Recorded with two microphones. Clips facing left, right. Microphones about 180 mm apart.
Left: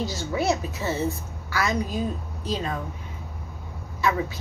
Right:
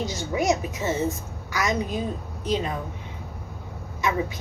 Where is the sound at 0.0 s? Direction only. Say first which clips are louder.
Even; 15° right (ahead or behind).